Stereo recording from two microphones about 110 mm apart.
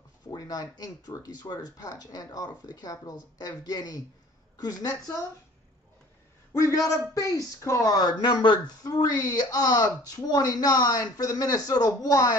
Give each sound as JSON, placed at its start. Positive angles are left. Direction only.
{"t": 0.3, "sound": "speech", "side_deg": 35}
{"t": 6.5, "sound": "speech", "side_deg": 30}